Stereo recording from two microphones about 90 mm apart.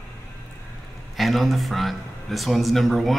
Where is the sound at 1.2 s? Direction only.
Centre (ahead or behind).